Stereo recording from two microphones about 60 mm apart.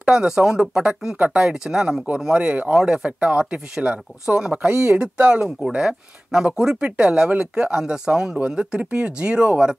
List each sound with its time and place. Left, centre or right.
0.0 s speech: centre
2.7 s speech: centre